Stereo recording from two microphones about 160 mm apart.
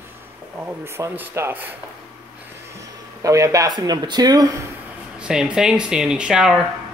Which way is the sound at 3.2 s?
20° right (ahead or behind).